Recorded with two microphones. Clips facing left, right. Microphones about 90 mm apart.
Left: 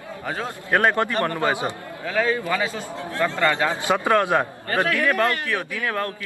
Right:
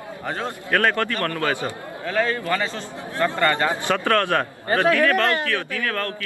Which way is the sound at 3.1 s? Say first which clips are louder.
Right 1 dB; 15° right (ahead or behind).